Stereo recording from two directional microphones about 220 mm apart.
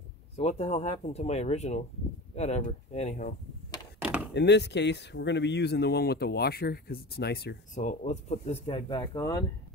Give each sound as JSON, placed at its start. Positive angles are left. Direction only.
{"t": 0.4, "sound": "speech", "side_deg": 30}
{"t": 4.0, "sound": "chop", "side_deg": -5}
{"t": 4.3, "sound": "speech", "side_deg": 50}
{"t": 7.7, "sound": "speech", "side_deg": 30}